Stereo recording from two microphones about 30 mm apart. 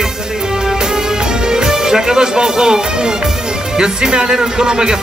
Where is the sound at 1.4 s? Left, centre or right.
Right.